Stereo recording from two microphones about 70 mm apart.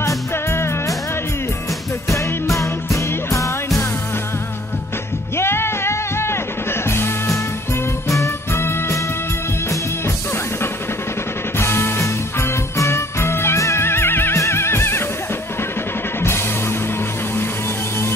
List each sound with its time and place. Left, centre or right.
0.0 s music: left
2.5 s music: left
5.4 s music: left
8.1 s music: left
8.6 s music: left
11.5 s music: left
16.2 s music: left